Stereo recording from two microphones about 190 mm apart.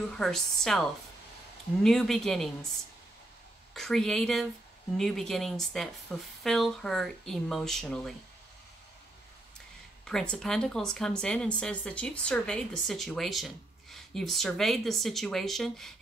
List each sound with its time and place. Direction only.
0.2 s speech: centre (ahead or behind)
3.7 s speech: centre (ahead or behind)
10.0 s speech: 5° left (ahead or behind)